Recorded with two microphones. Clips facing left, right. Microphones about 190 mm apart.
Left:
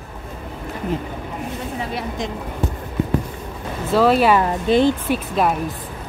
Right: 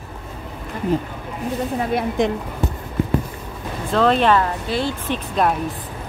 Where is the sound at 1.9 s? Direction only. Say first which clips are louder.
Right 6 dB; 60° right (ahead or behind).